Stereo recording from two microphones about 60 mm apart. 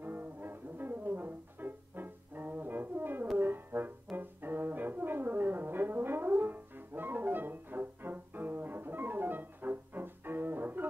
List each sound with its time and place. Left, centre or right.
0.0 s music: right